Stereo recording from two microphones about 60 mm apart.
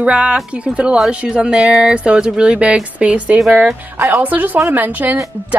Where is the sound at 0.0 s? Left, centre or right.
Centre.